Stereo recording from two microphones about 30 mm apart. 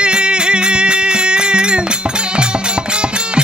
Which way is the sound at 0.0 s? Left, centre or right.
Right.